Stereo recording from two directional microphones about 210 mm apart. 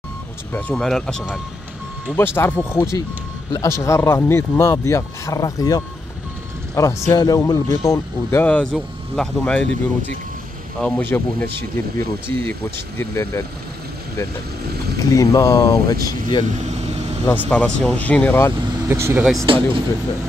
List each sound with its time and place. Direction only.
0.5 s speech: 5° left (ahead or behind)
10.8 s speech: 5° left (ahead or behind)
15.0 s speech: 15° left (ahead or behind)
16.6 s vehicle: 30° right (ahead or behind)
17.3 s speech: 5° left (ahead or behind)
18.9 s speech: 10° right (ahead or behind)
19.4 s speech: 25° right (ahead or behind)